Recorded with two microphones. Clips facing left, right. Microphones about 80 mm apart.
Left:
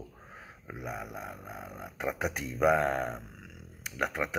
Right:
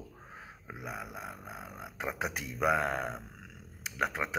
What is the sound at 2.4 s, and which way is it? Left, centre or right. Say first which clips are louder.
Speech: left 4 dB; left.